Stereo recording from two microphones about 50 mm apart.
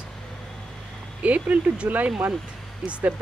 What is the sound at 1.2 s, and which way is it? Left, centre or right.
Speech, right.